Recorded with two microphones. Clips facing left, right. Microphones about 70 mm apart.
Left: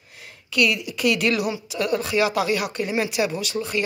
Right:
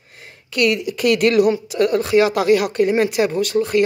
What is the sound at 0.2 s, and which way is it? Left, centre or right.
A woman's voice, right.